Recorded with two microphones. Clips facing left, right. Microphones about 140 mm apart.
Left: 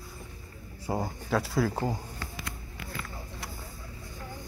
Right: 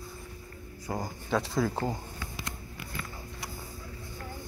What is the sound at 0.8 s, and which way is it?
Speech, 25° left (ahead or behind).